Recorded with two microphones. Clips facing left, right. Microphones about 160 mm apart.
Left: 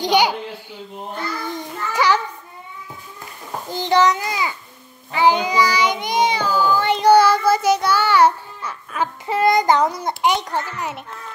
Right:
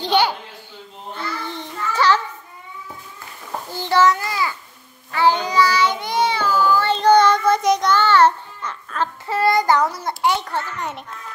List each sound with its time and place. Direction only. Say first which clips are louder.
0.0 s a sound: left 1 dB; 15° left (ahead or behind)
1.1 s child singing: left 1 dB; 10° left (ahead or behind)
3.7 s a child's voice: even; 20° left (ahead or behind)
5.1 s child singing: left 1 dB; 15° left (ahead or behind)